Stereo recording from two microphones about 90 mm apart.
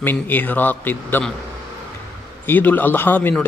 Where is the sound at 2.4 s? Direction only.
20° left (ahead or behind).